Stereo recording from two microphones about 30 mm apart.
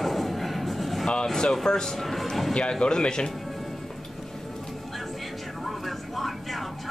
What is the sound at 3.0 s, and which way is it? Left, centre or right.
Speech, left.